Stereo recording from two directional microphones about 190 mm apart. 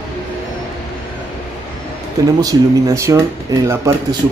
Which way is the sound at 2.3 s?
20° right (ahead or behind).